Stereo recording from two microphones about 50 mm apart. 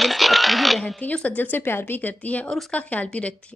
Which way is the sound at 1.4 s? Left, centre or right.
Left.